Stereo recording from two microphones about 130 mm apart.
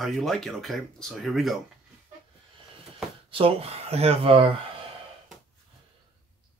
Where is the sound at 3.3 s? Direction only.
50° right (ahead or behind).